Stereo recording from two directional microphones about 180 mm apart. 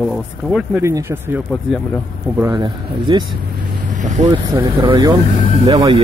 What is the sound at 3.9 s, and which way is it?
Speech, 40° right (ahead or behind).